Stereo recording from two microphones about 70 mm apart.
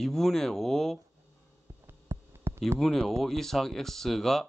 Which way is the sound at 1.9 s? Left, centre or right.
Right.